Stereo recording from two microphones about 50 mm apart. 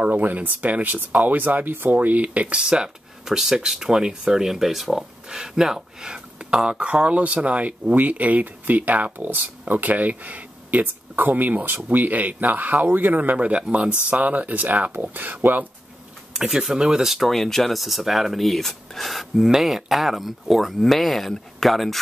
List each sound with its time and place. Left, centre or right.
0.0 s speech: right
2.6 s speech: centre; by 15.3 s right
16.3 s speech: centre
17.1 s speech: centre